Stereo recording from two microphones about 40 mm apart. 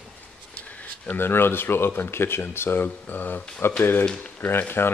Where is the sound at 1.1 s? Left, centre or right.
Left.